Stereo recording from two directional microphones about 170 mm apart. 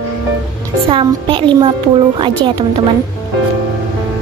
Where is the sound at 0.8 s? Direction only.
30° right (ahead or behind).